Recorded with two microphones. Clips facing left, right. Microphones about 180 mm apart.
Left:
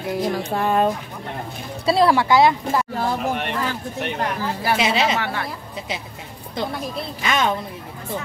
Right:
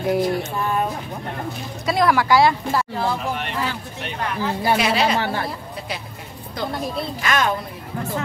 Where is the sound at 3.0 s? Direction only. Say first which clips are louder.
Left 1 dB; 45° left (ahead or behind).